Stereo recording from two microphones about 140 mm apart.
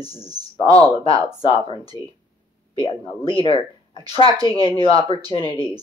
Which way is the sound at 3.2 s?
40° left (ahead or behind).